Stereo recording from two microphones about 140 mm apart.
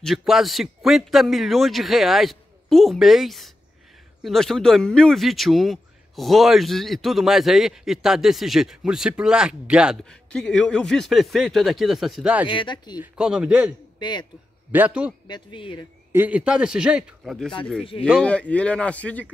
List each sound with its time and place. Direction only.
0.0 s speech: centre (ahead or behind)
10.0 s speech: 5° left (ahead or behind)
12.4 s speech: 35° left (ahead or behind)
13.0 s speech: 5° right (ahead or behind)
13.9 s speech: 30° left (ahead or behind)
14.7 s speech: 10° right (ahead or behind)
15.2 s speech: 35° left (ahead or behind)
16.1 s speech: 10° right (ahead or behind); by 19.2 s 10° left (ahead or behind)